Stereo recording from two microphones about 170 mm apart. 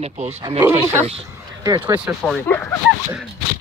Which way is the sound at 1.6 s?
25° right (ahead or behind).